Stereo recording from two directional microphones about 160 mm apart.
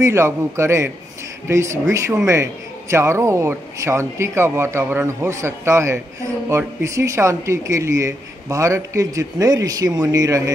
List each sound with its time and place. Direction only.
0.0 s a man's voice: 15° right (ahead or behind)